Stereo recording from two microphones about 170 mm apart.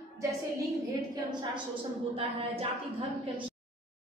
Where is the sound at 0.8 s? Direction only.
25° right (ahead or behind).